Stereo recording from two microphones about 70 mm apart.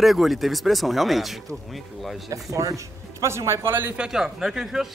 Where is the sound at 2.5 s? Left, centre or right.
Right.